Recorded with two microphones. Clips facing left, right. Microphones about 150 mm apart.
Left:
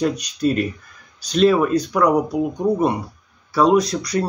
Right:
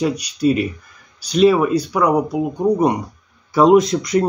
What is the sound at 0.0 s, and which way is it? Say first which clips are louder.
Speech: right 2 dB; 10° right (ahead or behind).